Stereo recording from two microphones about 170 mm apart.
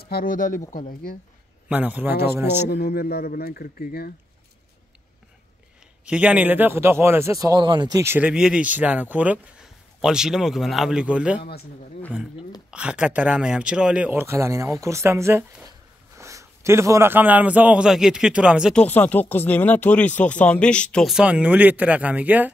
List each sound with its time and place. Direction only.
0.0 s speech: 60° left (ahead or behind)
1.7 s speech: 10° right (ahead or behind)
2.7 s speech: 65° left (ahead or behind)
6.0 s speech: 5° right (ahead or behind); by 8.0 s 25° right (ahead or behind)
8.0 s a man's voice: 10° right (ahead or behind)
12.7 s speech: 5° right (ahead or behind)
18.8 s speech: 10° left (ahead or behind); by 22.5 s 10° right (ahead or behind)